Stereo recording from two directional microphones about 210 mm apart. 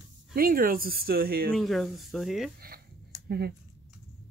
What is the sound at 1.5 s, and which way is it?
Speech, centre (ahead or behind).